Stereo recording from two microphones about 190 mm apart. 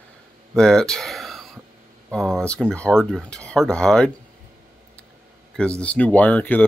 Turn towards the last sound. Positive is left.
turn(degrees=10)  # may be behind; listen again after turning